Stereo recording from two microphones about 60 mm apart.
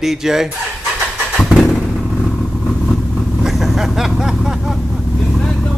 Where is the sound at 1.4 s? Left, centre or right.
Centre.